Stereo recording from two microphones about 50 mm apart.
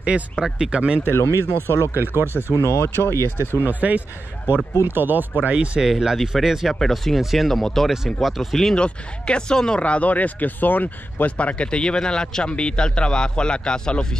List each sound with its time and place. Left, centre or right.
0.0 s speech: right
1.1 s speech: left
2.0 s speech: right
2.6 s speech: left
3.6 s speech: right
4.8 s speech: right
5.4 s speech: right
5.8 s speech: centre
6.7 s speech: centre
7.9 s speech: centre
8.7 s speech: left